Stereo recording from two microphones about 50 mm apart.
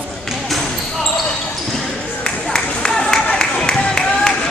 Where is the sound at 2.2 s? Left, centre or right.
Centre.